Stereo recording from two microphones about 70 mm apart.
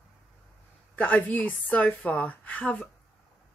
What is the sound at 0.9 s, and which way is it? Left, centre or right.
A woman's voice, left.